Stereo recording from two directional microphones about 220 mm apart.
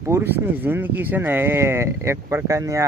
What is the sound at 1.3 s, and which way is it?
Speech, 10° right (ahead or behind).